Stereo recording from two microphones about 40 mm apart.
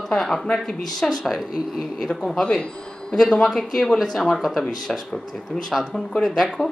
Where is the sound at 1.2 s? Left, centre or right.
Centre.